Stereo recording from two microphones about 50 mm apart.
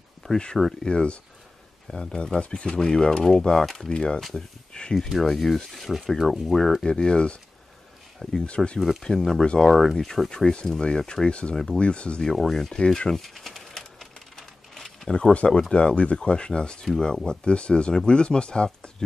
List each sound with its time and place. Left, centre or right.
0.2 s speech: centre
4.2 s speech: centre
4.7 s speech: centre
5.2 s speech: centre
6.9 s speech: centre
11.5 s speech: centre
11.8 s speech: left
12.3 s speech: centre
13.1 s typewriter: centre
15.0 s speech: centre